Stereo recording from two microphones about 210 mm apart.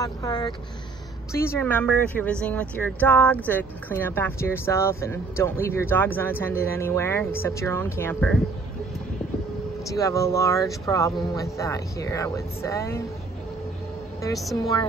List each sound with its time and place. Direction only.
0.0 s speech: 20° left (ahead or behind)
9.8 s speech: 15° left (ahead or behind)
14.3 s a woman's voice: centre (ahead or behind)
14.6 s speech: 15° left (ahead or behind)